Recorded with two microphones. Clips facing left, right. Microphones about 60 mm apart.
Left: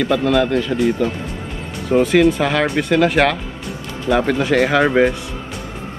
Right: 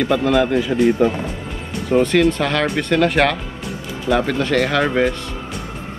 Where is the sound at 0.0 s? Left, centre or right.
Centre.